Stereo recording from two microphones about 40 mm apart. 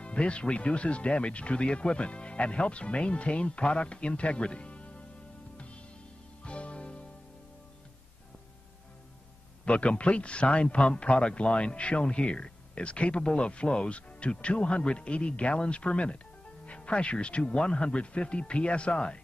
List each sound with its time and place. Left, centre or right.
0.0 s speech: left
6.4 s music: left
9.7 s speech: left